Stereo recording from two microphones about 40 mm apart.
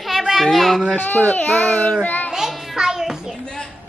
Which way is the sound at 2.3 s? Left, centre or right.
Centre.